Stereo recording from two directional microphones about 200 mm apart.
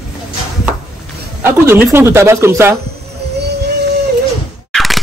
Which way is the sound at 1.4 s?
10° right (ahead or behind).